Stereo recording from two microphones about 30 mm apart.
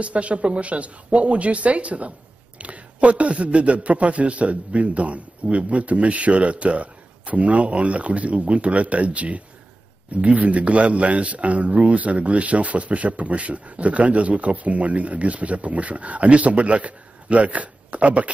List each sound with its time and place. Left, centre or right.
0.0 s speech: right